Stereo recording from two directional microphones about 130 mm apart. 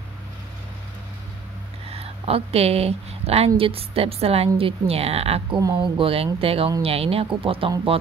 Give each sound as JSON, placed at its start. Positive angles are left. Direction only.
{"t": 1.9, "sound": "speech", "side_deg": -50}
{"t": 5.6, "sound": "speech", "side_deg": -30}
{"t": 5.9, "sound": "speech", "side_deg": -45}